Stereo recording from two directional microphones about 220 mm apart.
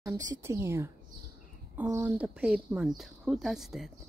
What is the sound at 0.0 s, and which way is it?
Speech, 15° right (ahead or behind).